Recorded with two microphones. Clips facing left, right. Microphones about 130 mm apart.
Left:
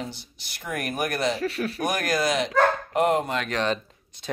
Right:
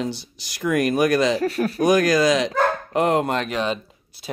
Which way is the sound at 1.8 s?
90° right.